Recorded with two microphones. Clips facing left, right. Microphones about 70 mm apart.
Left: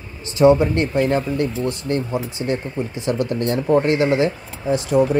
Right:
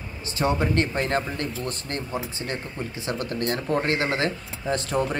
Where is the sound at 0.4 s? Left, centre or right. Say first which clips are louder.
Left 9 dB; left.